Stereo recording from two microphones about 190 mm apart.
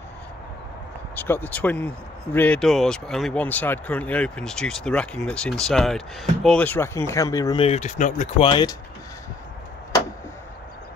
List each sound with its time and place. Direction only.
1.1 s speech: 10° left (ahead or behind)
7.6 s speech: 35° left (ahead or behind)
8.4 s speech: 25° left (ahead or behind)